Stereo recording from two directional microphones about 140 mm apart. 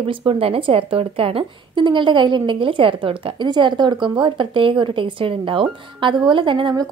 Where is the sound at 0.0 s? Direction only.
40° right (ahead or behind).